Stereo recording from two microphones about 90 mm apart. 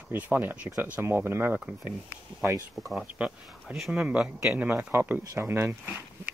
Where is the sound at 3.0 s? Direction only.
15° right (ahead or behind).